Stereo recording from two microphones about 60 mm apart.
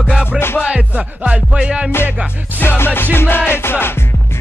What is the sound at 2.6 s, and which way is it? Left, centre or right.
Music, left.